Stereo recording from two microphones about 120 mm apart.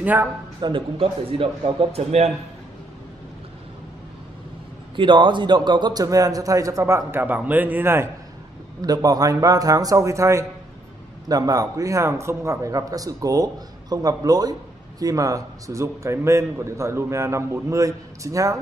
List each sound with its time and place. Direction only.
0.0 s speech: 15° right (ahead or behind)
0.6 s a man's voice: 45° right (ahead or behind)
4.9 s a man's voice: 45° right (ahead or behind); by 8.1 s 20° right (ahead or behind)
8.8 s a man's voice: 30° right (ahead or behind)